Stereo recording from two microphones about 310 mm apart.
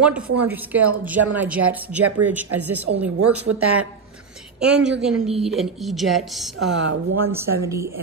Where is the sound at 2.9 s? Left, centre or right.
Right.